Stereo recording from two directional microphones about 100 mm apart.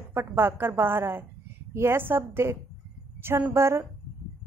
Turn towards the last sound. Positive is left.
turn(degrees=-25)  # may be behind; listen again after turning